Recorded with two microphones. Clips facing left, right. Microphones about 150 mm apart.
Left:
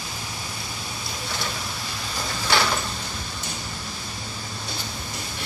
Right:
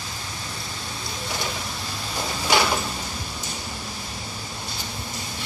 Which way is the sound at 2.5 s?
15° right (ahead or behind).